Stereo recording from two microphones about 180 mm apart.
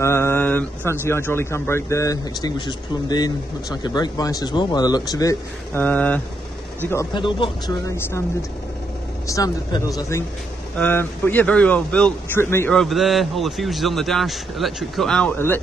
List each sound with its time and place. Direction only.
0.0 s a man's voice: 15° left (ahead or behind)
7.2 s speech: 25° left (ahead or behind)
7.9 s a man's voice: 15° left (ahead or behind)
12.7 s a man's voice: centre (ahead or behind)